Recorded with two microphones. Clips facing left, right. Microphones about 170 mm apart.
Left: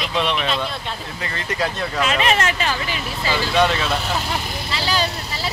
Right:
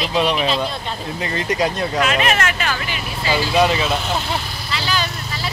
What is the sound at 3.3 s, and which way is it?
Speech, 10° right (ahead or behind).